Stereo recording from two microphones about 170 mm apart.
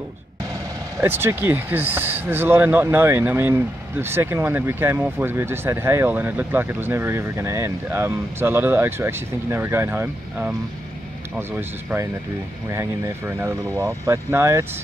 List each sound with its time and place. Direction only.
0.9 s speech: 15° right (ahead or behind)